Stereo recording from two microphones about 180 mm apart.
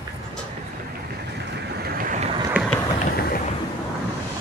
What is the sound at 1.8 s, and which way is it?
Vehicle, 50° right (ahead or behind).